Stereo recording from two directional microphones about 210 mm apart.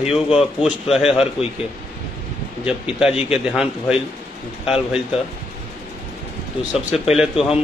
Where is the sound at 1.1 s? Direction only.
30° left (ahead or behind).